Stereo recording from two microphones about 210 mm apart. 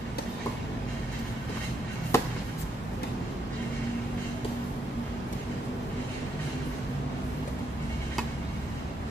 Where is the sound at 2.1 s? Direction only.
10° left (ahead or behind).